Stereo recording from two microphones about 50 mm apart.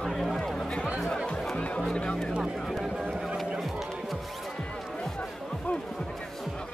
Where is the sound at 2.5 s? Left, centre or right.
Centre.